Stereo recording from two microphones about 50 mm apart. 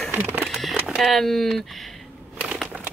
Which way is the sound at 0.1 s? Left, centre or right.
Right.